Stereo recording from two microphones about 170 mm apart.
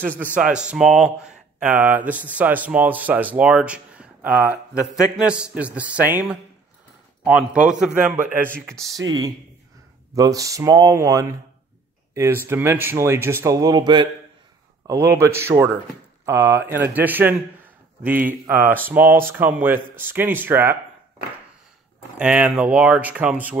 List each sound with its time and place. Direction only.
0.2 s speech: 5° right (ahead or behind)
7.2 s a man's voice: 5° right (ahead or behind)
10.1 s speech: 20° right (ahead or behind)
15.1 s speech: 15° right (ahead or behind)
22.1 s speech: 5° right (ahead or behind)